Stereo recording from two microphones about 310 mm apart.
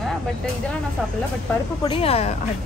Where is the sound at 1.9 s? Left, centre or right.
Centre.